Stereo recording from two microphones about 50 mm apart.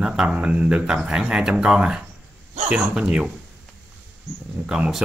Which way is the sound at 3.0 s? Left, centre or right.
Right.